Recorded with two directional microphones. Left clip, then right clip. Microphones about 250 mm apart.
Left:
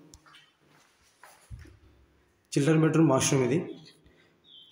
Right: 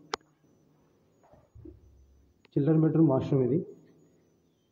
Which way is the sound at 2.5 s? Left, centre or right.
Centre.